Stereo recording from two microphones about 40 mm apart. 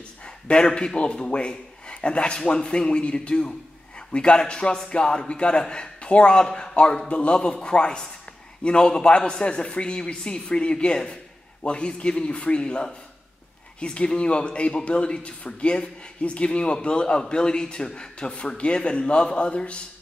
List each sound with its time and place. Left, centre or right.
0.5 s speech: left